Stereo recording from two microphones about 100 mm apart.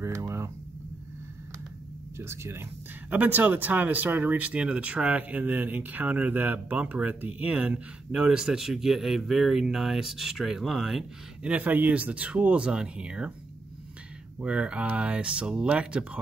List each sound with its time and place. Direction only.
0.0 s a sound: 30° right (ahead or behind)
2.1 s speech: 25° right (ahead or behind); by 11.5 s 5° right (ahead or behind)
11.5 s speech: 15° right (ahead or behind)
14.4 s speech: 10° right (ahead or behind)